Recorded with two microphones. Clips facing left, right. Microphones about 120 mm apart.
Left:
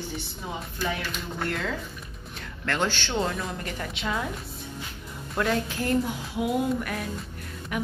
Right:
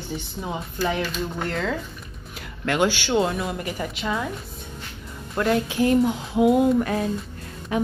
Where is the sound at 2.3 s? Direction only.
15° right (ahead or behind).